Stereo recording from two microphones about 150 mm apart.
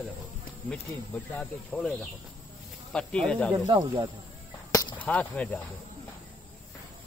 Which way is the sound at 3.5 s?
30° right (ahead or behind).